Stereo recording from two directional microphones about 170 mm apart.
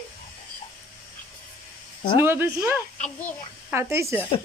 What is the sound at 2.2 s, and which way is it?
Speech, 15° right (ahead or behind).